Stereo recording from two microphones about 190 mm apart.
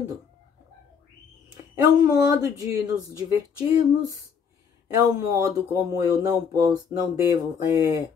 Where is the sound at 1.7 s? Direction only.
15° right (ahead or behind).